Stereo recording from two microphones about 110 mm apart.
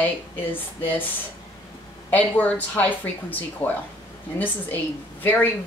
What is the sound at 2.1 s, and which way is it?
Speech, 15° left (ahead or behind).